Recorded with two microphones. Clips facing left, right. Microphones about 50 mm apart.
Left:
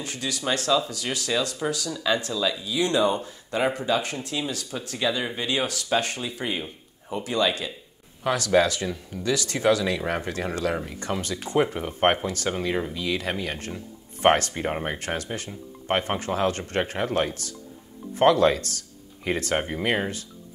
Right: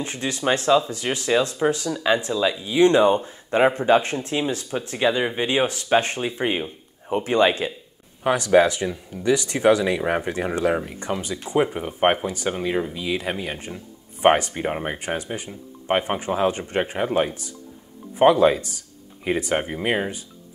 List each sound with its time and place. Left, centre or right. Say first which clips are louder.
0.0 s speech: right 5 dB; right
8.2 s speech: right 4 dB; right